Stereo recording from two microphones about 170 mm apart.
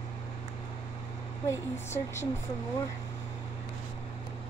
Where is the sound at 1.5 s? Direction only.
15° left (ahead or behind).